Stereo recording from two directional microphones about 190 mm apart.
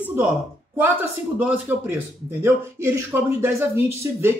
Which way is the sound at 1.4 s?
10° right (ahead or behind).